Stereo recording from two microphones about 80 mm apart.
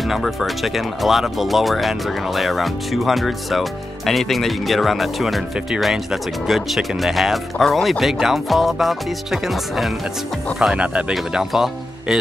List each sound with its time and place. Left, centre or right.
0.1 s speech: centre
10.6 s speech: centre